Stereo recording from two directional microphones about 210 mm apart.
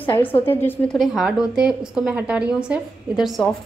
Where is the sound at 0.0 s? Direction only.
10° left (ahead or behind).